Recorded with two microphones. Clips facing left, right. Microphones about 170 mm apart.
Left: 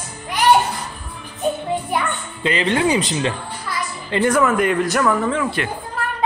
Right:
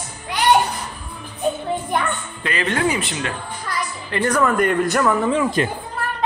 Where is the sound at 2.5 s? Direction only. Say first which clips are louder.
Left 3 dB; 25° left (ahead or behind).